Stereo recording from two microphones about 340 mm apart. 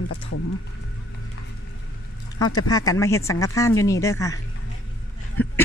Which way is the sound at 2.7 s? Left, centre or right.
Centre.